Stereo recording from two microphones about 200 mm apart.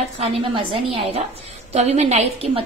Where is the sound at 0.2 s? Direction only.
25° right (ahead or behind).